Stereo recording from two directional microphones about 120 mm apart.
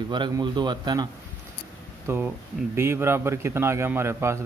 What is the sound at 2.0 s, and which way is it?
Speech, 20° right (ahead or behind).